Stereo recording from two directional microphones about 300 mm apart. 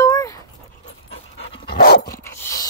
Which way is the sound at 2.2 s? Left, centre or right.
Centre.